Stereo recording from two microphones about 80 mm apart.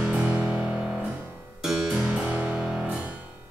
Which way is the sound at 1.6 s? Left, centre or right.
Centre.